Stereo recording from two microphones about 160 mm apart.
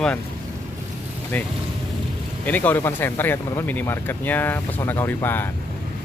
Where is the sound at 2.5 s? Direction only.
10° left (ahead or behind).